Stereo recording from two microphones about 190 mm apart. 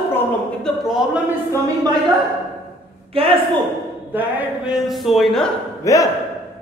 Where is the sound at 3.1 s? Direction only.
30° right (ahead or behind).